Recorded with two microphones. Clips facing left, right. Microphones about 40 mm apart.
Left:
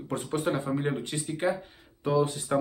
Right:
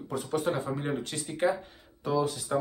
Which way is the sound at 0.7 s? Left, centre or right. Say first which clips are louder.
Left 3 dB; centre.